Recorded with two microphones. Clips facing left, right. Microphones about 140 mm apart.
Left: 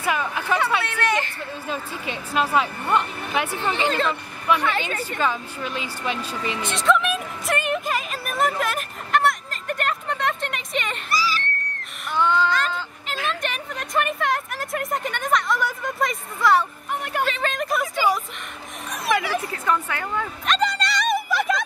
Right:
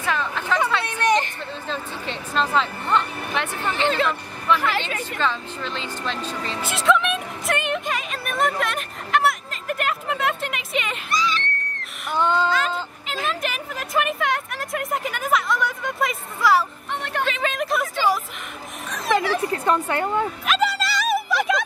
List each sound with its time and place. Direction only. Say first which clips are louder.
0.0 s speech: left 1 dB; 10° left (ahead or behind)
0.8 s hubbub: right 3 dB; 15° right (ahead or behind)
1.7 s speech: even; 10° left (ahead or behind)
3.9 s speech: right 1 dB; centre (ahead or behind)
5.2 s speech: even; 10° left (ahead or behind)
6.7 s a sound: right 1 dB; centre (ahead or behind)
12.2 s a sound: even; 20° right (ahead or behind)
12.4 s fowl: right 1 dB; 5° right (ahead or behind)
13.0 s vehicle: even; centre (ahead or behind)
19.4 s a woman's voice: right 3 dB; 35° right (ahead or behind)
20.4 s music: right 1 dB; 5° right (ahead or behind)